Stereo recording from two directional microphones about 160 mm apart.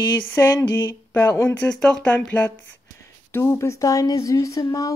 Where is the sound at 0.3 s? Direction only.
20° left (ahead or behind); by 2.0 s 5° left (ahead or behind).